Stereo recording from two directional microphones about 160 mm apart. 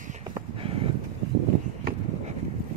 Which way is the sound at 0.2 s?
35° right (ahead or behind).